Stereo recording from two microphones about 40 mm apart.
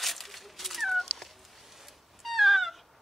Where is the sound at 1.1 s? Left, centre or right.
Centre.